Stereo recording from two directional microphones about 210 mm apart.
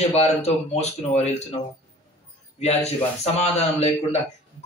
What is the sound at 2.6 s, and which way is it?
A man's voice, 30° left (ahead or behind).